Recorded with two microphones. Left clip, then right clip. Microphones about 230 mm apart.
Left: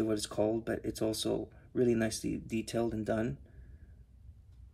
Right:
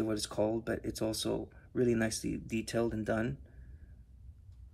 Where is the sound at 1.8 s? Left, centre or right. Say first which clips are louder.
Left 1 dB; centre.